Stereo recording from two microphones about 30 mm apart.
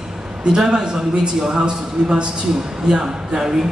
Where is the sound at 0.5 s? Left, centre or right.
Right.